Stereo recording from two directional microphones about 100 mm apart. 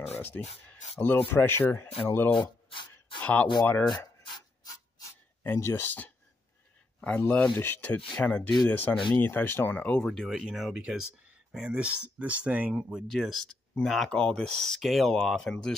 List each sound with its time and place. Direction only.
0.1 s speech: 20° left (ahead or behind)
2.3 s a sound: 55° left (ahead or behind)
3.2 s speech: 15° left (ahead or behind)
5.4 s speech: 25° left (ahead or behind)
7.5 s speech: 20° left (ahead or behind); by 13.0 s 15° right (ahead or behind)
13.0 s speech: centre (ahead or behind)